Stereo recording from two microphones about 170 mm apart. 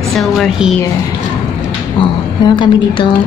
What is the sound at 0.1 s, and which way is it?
Speech, centre (ahead or behind).